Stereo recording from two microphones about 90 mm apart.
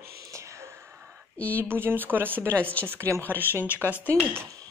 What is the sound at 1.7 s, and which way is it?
Speech, 25° right (ahead or behind).